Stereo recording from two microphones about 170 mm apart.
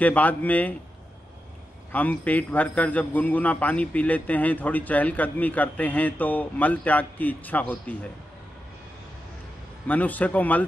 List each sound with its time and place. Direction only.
0.0 s a man's voice: 10° left (ahead or behind)
1.9 s a man's voice: 10° left (ahead or behind)
9.8 s a man's voice: 10° left (ahead or behind)